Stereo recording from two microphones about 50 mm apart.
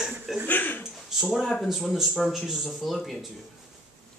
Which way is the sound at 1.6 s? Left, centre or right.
Centre.